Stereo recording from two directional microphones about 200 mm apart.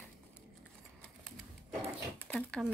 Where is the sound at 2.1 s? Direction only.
5° left (ahead or behind).